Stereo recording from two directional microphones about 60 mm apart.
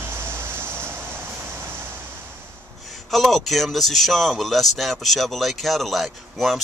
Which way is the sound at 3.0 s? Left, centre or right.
Centre.